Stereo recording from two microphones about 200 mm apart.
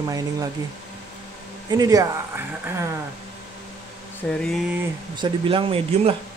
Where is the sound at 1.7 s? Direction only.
20° right (ahead or behind).